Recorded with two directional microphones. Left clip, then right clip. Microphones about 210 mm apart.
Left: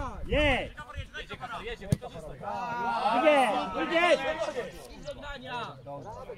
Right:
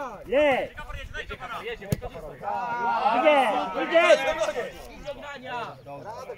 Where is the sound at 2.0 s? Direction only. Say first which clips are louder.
Right 5 dB; 50° left (ahead or behind).